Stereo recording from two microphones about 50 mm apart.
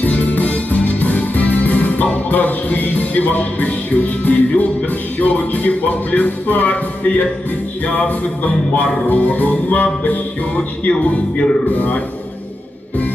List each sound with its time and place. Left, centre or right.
0.0 s music: left
9.0 s music: left
11.7 s music: left